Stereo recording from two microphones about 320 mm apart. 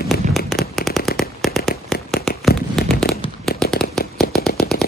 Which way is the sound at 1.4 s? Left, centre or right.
Centre.